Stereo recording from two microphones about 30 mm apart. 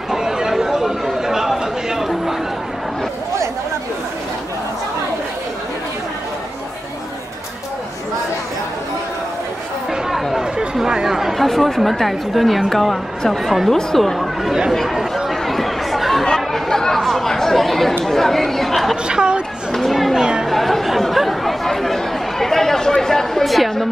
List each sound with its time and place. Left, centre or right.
0.5 s chatter: centre
10.4 s chatter: right
11.1 s chatter: centre
11.3 s a woman's voice: centre
15.2 s chatter: centre
16.3 s chatter: centre
18.0 s speech: centre
19.0 s a woman's voice: right
19.7 s chatter: centre
23.4 s speech: centre